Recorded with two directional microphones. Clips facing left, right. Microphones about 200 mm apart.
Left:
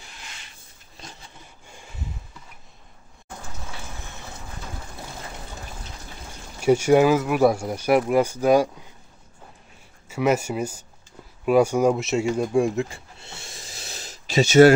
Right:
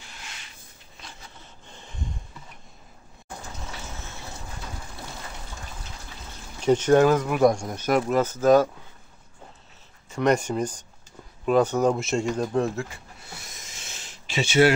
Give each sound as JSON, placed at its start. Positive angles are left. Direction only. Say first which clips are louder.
{"t": 1.7, "sound": "a sound", "louder": "right 1 dB", "side_deg": 10}
{"t": 6.6, "sound": "speech", "louder": "left 1 dB", "side_deg": 10}
{"t": 10.0, "sound": "speech", "louder": "even", "side_deg": 5}
{"t": 12.9, "sound": "snort", "louder": "left 1 dB", "side_deg": 25}